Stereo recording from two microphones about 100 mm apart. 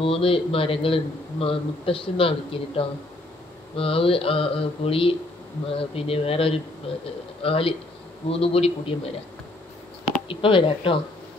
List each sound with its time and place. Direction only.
0.0 s a man's voice: 65° left (ahead or behind)
3.7 s mantra: 65° left (ahead or behind)
6.9 s a man's voice: 65° left (ahead or behind)
7.4 s mantra: 70° left (ahead or behind)
8.3 s mantra: 80° left
10.2 s a man's voice: 60° left (ahead or behind)